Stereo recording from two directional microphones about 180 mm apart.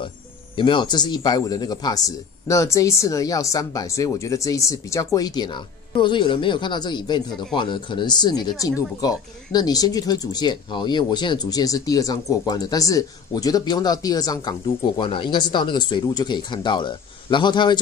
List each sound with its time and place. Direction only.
0.6 s speech: 25° left (ahead or behind)